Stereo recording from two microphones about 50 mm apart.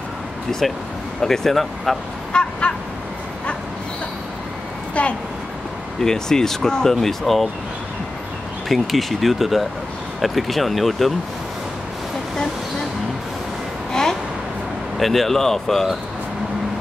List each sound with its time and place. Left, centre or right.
0.5 s speech: centre
2.3 s dog: centre
5.0 s speech: left
5.9 s speech: centre
8.6 s speech: centre
15.0 s speech: centre